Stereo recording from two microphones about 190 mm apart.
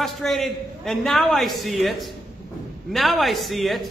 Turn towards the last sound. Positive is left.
turn(degrees=0)  # may be behind; listen again after turning